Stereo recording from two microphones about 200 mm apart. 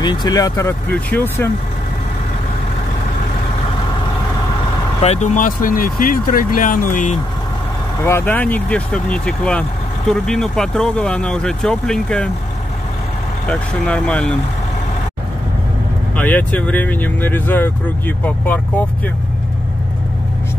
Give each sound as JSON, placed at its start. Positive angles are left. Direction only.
{"t": 0.0, "sound": "speech", "side_deg": 20}
{"t": 5.0, "sound": "speech", "side_deg": 35}
{"t": 8.0, "sound": "speech", "side_deg": 10}
{"t": 13.5, "sound": "speech", "side_deg": 5}
{"t": 16.2, "sound": "speech", "side_deg": 10}